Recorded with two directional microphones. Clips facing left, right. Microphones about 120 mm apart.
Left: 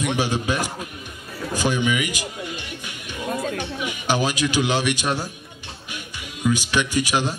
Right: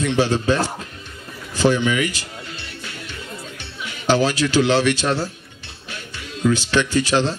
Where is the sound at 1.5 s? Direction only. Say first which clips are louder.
Right 4 dB; 15° left (ahead or behind).